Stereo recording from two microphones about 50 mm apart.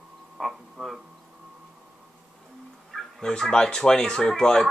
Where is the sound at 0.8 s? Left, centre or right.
Centre.